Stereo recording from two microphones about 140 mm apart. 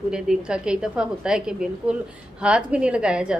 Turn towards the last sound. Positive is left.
turn(degrees=-5)  # may be behind; listen again after turning